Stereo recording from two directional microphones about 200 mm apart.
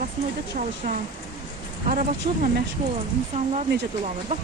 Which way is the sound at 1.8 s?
40° right (ahead or behind).